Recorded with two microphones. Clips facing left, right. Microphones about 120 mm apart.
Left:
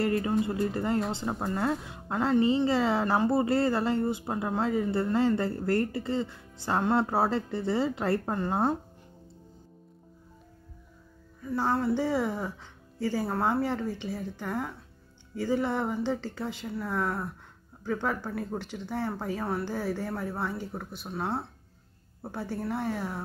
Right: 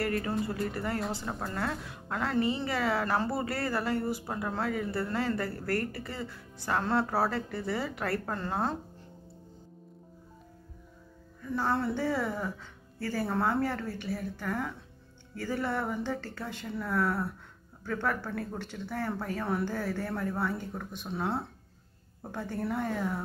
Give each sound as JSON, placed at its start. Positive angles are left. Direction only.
{"t": 0.0, "sound": "a woman's voice", "side_deg": 25}
{"t": 11.5, "sound": "speech", "side_deg": 5}